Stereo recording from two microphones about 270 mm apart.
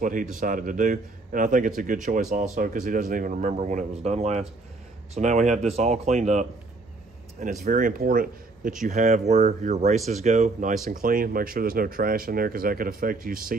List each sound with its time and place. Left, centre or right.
0.0 s a man's voice: right
7.6 s a man's voice: right